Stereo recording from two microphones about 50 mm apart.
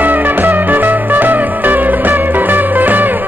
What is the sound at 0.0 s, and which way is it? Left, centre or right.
Music, right.